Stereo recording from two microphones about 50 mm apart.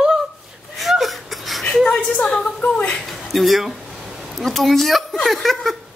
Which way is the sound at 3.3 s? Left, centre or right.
Centre.